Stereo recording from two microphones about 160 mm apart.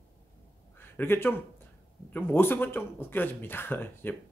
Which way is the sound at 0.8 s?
15° left (ahead or behind).